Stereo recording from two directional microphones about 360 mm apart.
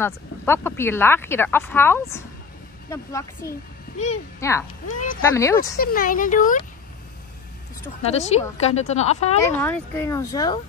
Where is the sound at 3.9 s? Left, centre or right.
Left.